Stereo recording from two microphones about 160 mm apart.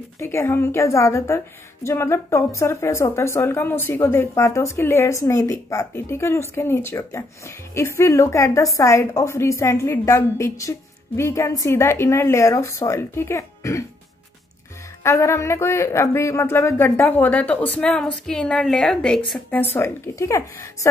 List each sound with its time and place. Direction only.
0.2 s a woman's voice: 15° left (ahead or behind)
15.0 s a woman's voice: 15° left (ahead or behind)
19.7 s speech: 20° left (ahead or behind)